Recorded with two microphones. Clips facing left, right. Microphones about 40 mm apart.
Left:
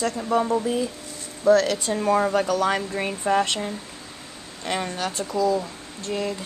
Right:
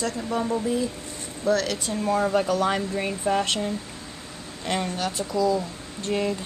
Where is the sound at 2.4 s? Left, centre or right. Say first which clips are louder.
Left 1 dB; centre.